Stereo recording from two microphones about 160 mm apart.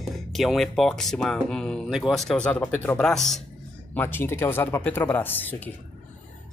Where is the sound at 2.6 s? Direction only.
20° left (ahead or behind).